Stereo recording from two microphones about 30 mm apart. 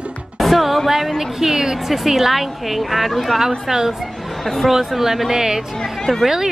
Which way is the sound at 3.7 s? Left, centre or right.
Centre.